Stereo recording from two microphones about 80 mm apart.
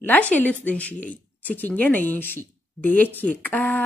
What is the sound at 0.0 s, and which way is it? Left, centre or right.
A woman's voice, left.